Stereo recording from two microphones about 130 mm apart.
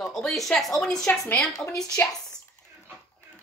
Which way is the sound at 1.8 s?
25° left (ahead or behind).